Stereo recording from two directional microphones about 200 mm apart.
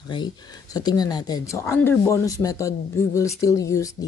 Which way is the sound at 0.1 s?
20° left (ahead or behind).